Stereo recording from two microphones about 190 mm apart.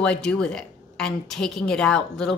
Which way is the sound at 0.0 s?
5° left (ahead or behind).